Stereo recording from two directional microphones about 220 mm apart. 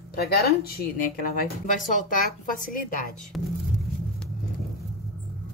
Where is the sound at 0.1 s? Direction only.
45° left (ahead or behind).